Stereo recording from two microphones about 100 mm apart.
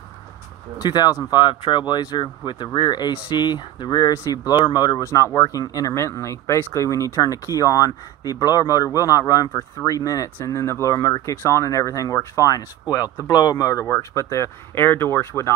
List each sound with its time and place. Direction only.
0.7 s speech: 45° left (ahead or behind); by 15.5 s 25° left (ahead or behind)